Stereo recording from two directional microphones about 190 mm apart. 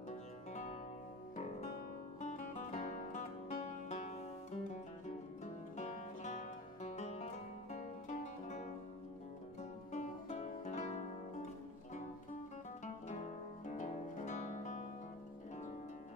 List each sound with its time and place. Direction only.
2.2 s music: 40° left (ahead or behind)
5.8 s music: 35° left (ahead or behind)
13.7 s music: 40° left (ahead or behind)